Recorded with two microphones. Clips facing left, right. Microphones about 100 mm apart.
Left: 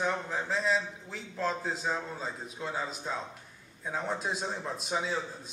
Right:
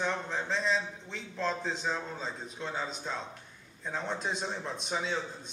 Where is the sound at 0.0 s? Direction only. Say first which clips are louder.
Left 1 dB; 5° left (ahead or behind).